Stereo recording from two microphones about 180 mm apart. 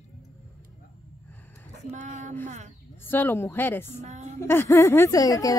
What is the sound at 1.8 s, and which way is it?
Speech, 45° right (ahead or behind).